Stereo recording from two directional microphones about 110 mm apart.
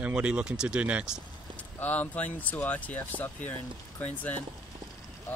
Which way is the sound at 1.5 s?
15° left (ahead or behind).